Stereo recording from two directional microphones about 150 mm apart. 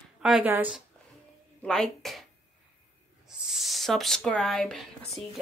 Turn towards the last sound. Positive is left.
turn(degrees=5)  # may be behind; listen again after turning